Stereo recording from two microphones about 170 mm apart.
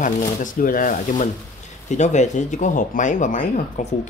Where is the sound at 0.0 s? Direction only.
55° left (ahead or behind).